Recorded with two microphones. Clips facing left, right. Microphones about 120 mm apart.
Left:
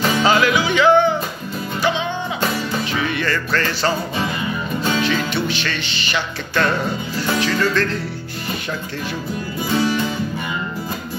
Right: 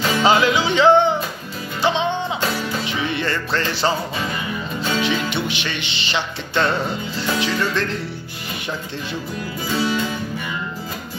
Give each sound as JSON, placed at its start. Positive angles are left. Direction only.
{"t": 0.2, "sound": "music", "side_deg": -20}
{"t": 5.0, "sound": "music", "side_deg": -20}